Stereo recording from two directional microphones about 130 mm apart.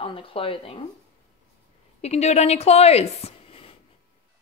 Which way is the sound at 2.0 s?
55° left (ahead or behind).